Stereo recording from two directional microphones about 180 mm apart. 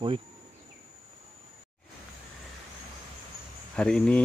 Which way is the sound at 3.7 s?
5° left (ahead or behind).